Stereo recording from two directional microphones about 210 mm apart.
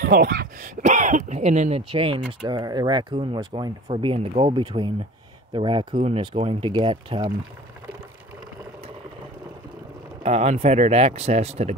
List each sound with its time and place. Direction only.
0.0 s speech: 45° right (ahead or behind); by 7.2 s 20° right (ahead or behind)
10.2 s speech: 30° right (ahead or behind)